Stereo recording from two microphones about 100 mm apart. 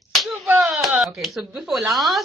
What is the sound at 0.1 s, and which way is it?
Slap, centre (ahead or behind).